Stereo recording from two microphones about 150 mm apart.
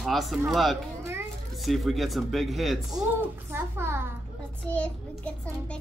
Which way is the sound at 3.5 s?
15° right (ahead or behind).